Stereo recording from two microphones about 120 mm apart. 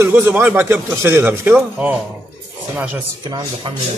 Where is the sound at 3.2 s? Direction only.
35° right (ahead or behind).